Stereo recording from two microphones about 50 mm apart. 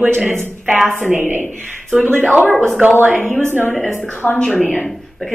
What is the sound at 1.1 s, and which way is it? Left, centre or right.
Speech, right.